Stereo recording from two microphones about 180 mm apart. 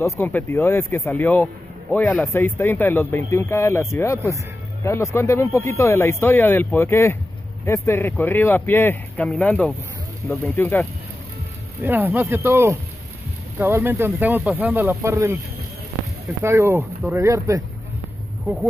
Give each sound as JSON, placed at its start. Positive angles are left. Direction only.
{"t": 0.0, "sound": "speech", "side_deg": 10}
{"t": 11.8, "sound": "speech", "side_deg": -10}
{"t": 16.4, "sound": "speech", "side_deg": -15}